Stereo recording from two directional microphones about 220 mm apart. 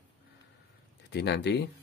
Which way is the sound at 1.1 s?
50° left (ahead or behind).